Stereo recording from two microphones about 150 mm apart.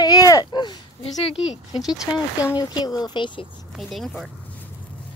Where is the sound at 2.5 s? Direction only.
30° left (ahead or behind).